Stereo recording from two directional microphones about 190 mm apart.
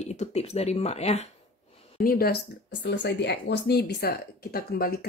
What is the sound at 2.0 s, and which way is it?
Speech, 50° left (ahead or behind).